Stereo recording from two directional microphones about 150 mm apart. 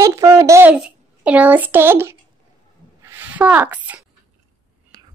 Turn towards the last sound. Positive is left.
turn(degrees=-25)  # may be behind; listen again after turning